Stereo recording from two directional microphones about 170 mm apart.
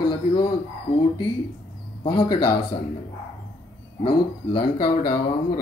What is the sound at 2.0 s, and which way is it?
Speech, 25° left (ahead or behind).